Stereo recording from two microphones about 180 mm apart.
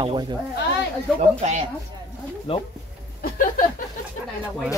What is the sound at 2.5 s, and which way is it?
Speech, 30° left (ahead or behind).